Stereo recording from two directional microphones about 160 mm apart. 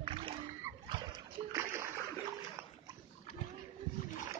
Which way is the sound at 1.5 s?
15° right (ahead or behind).